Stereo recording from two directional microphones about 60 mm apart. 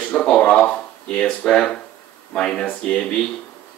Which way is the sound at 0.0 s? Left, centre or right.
Centre.